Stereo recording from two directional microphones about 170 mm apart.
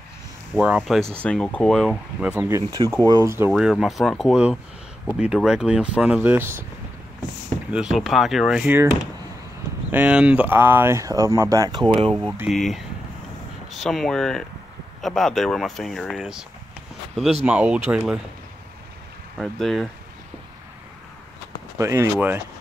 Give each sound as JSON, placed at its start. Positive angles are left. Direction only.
{"t": 0.6, "sound": "speech", "side_deg": -5}
{"t": 3.5, "sound": "speech", "side_deg": 0}
{"t": 7.7, "sound": "speech", "side_deg": -5}
{"t": 9.8, "sound": "speech", "side_deg": -10}
{"t": 12.1, "sound": "speech", "side_deg": -5}
{"t": 19.3, "sound": "speech", "side_deg": 0}
{"t": 21.7, "sound": "speech", "side_deg": -15}